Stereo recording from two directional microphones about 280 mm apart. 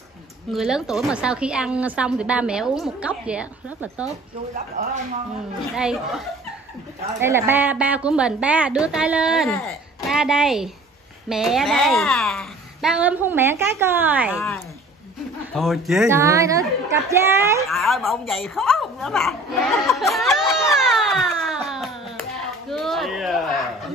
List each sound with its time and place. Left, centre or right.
0.5 s a woman's voice: centre
4.8 s speech: right
5.8 s a woman's voice: centre
15.5 s speech: centre
17.6 s a sound: centre